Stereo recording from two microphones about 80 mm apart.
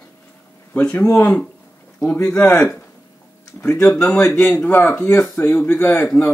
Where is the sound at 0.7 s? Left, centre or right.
Left.